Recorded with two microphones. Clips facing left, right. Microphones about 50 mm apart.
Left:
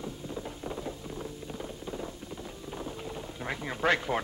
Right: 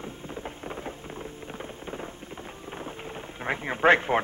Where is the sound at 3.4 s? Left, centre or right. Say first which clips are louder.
Right 7 dB; right.